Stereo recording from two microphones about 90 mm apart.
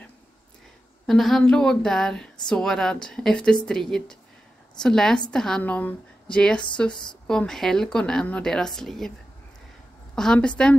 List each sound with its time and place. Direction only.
1.0 s a woman's voice: centre (ahead or behind)
5.6 s a woman's voice: 20° left (ahead or behind)
10.1 s speech: 10° left (ahead or behind)